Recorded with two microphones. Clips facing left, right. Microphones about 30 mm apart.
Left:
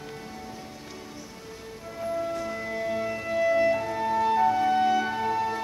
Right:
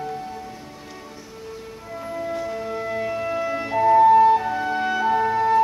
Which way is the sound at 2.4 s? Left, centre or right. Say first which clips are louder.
Right 4 dB; centre.